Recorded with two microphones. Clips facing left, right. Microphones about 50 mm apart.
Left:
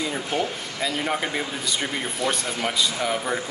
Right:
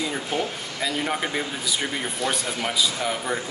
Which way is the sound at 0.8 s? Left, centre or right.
Centre.